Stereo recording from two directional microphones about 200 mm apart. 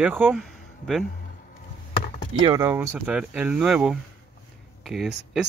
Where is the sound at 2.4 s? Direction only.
15° right (ahead or behind).